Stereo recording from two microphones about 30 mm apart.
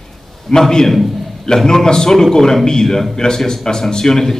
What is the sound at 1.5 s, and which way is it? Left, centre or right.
A man's voice, left.